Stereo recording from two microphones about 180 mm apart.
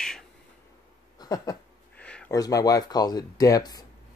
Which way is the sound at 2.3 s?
20° left (ahead or behind).